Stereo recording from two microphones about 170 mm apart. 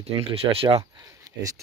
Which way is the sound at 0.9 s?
20° right (ahead or behind).